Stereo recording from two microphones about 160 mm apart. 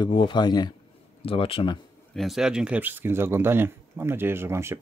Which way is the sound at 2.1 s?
Centre (ahead or behind).